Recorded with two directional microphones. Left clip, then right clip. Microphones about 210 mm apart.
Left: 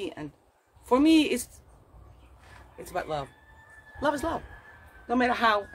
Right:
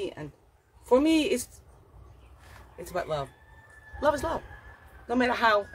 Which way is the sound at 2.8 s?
10° left (ahead or behind).